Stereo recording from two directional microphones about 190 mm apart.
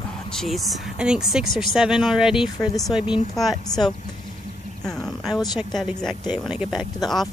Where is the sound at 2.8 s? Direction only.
25° left (ahead or behind).